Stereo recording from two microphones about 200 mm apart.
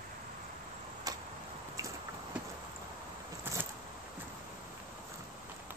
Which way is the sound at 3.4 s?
10° right (ahead or behind).